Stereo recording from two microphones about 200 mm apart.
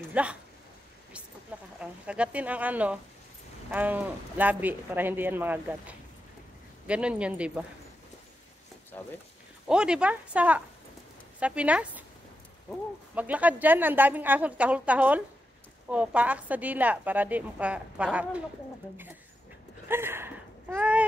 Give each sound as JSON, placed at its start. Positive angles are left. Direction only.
{"t": 0.1, "sound": "speech", "side_deg": -5}
{"t": 1.8, "sound": "a woman's voice", "side_deg": -5}
{"t": 9.7, "sound": "a woman's voice", "side_deg": -5}
{"t": 13.1, "sound": "a woman's voice", "side_deg": -5}
{"t": 19.9, "sound": "speech", "side_deg": -10}